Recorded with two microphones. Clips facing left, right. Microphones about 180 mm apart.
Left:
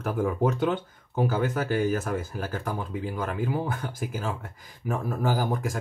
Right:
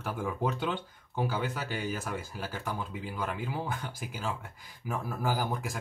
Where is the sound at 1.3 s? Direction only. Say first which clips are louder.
Left 8 dB; 45° left (ahead or behind).